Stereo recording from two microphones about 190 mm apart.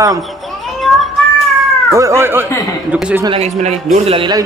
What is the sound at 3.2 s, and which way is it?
A man's voice, 35° right (ahead or behind).